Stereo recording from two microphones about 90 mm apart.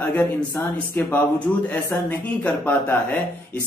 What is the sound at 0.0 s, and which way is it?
Speech, 25° left (ahead or behind).